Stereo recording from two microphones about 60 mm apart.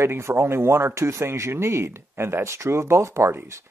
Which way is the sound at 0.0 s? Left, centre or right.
Right.